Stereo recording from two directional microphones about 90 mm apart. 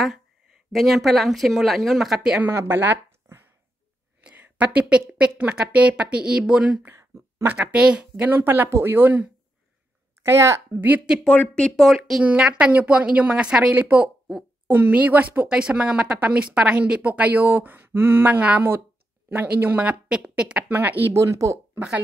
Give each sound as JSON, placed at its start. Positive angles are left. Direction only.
{"t": 0.7, "sound": "speech", "side_deg": 0}
{"t": 2.3, "sound": "speech", "side_deg": -20}
{"t": 4.2, "sound": "a sound", "side_deg": -15}
{"t": 5.4, "sound": "a woman's voice", "side_deg": -15}
{"t": 7.0, "sound": "a sound", "side_deg": -35}
{"t": 7.4, "sound": "speech", "side_deg": -20}
{"t": 7.7, "sound": "speech", "side_deg": -10}
{"t": 10.2, "sound": "speech", "side_deg": -30}
{"t": 11.2, "sound": "speech", "side_deg": 15}
{"t": 12.2, "sound": "a woman's voice", "side_deg": -10}
{"t": 21.2, "sound": "speech", "side_deg": -35}